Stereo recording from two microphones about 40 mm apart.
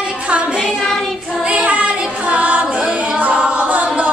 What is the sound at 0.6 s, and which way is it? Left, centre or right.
Child singing, centre.